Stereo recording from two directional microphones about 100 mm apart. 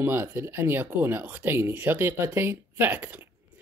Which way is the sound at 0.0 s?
25° right (ahead or behind).